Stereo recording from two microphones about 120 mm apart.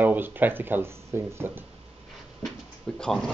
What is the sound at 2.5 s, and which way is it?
Speech, 5° left (ahead or behind).